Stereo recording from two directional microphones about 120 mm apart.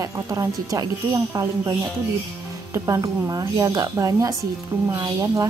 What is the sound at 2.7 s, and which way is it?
A woman's voice, 25° right (ahead or behind).